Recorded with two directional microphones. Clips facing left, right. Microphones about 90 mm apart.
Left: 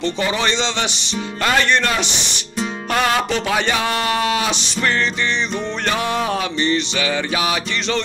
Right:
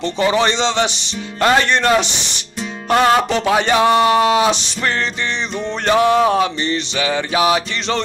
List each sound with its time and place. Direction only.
0.0 s a man's voice: 30° right (ahead or behind)
1.4 s music: 30° right (ahead or behind)